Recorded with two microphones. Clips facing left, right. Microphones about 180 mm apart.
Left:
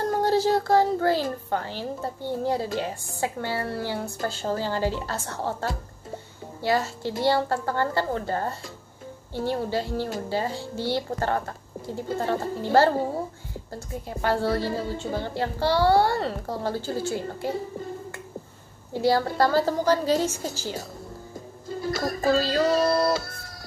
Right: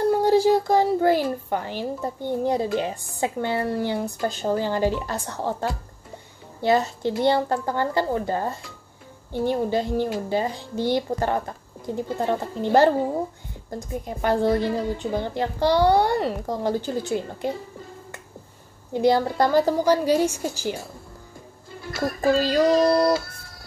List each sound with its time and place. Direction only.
0.2 s speech: 15° right (ahead or behind)
18.9 s speech: 20° right (ahead or behind)
21.9 s music: 35° left (ahead or behind)
22.4 s speech: 15° right (ahead or behind)